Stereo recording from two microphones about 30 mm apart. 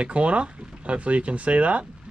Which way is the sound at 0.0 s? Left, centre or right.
Right.